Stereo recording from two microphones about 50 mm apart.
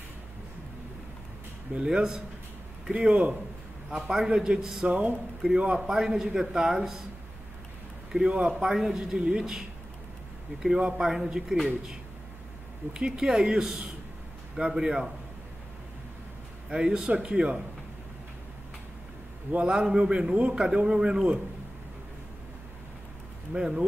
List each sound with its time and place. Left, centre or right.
1.9 s a man's voice: centre
3.9 s a man's voice: centre
4.8 s a man's voice: right
5.8 s a man's voice: centre
8.1 s a man's voice: centre
12.9 s a man's voice: centre
16.6 s a man's voice: centre
19.5 s a man's voice: centre
23.5 s a man's voice: centre